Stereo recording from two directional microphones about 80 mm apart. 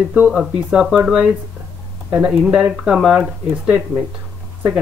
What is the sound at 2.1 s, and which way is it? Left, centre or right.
Speech, right.